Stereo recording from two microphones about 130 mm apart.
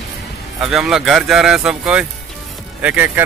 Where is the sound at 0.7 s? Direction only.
5° right (ahead or behind).